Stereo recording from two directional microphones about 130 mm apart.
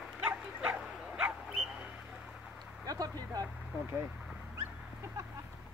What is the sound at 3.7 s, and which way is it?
Speech, 10° right (ahead or behind).